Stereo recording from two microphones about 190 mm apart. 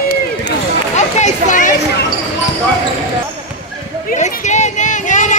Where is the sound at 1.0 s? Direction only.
35° left (ahead or behind).